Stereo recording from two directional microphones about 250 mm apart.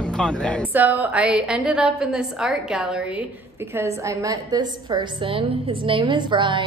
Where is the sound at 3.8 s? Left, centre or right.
Centre.